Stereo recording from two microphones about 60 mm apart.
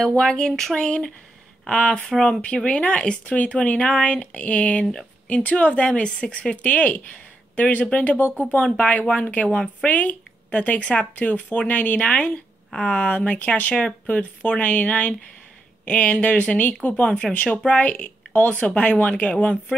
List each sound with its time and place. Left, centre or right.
0.1 s speech: centre
2.4 s speech: centre
8.5 s speech: left